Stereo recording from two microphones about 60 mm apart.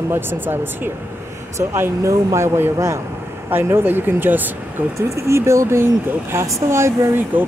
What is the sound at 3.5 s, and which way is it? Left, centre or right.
Speech, right.